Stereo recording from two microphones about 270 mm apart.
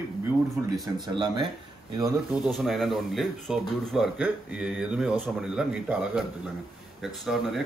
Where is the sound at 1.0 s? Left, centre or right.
Centre.